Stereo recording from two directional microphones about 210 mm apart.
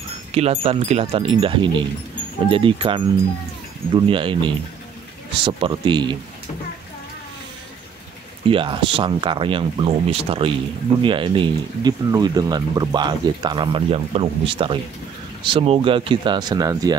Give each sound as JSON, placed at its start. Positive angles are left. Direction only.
{"t": 0.3, "sound": "speech", "side_deg": -30}
{"t": 8.5, "sound": "speech", "side_deg": -25}